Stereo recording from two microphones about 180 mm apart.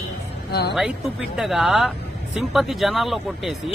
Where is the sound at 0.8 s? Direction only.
Centre (ahead or behind).